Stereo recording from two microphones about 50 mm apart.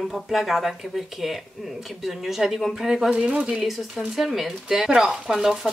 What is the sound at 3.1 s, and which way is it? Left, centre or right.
Speech, centre.